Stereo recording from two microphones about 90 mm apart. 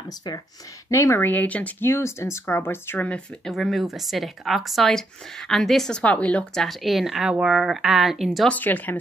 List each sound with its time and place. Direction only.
0.8 s speech: 35° left (ahead or behind)
1.2 s speech: 20° left (ahead or behind)
1.9 s speech: 30° left (ahead or behind)
3.1 s a woman's voice: 5° left (ahead or behind)
8.5 s speech: 20° left (ahead or behind)